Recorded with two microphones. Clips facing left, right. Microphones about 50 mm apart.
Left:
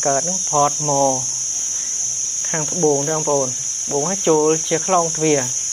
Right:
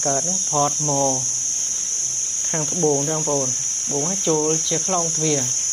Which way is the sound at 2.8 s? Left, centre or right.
Centre.